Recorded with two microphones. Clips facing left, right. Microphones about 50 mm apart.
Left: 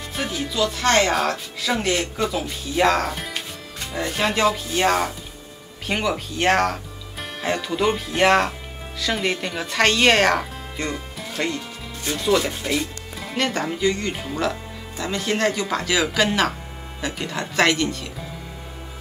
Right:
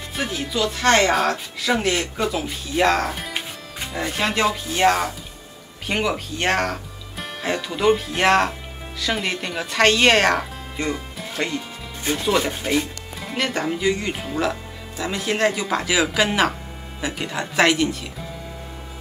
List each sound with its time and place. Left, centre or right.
0.1 s speech: centre
12.0 s speech: right
13.2 s speech: centre